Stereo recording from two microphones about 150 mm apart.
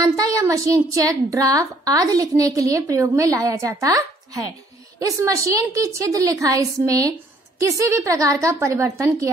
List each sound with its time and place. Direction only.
0.0 s a woman's voice: 20° right (ahead or behind)